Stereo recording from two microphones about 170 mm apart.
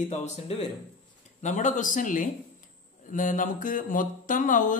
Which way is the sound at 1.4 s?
45° left (ahead or behind).